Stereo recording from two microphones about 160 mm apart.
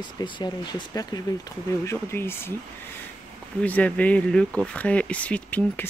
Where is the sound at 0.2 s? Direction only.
30° left (ahead or behind).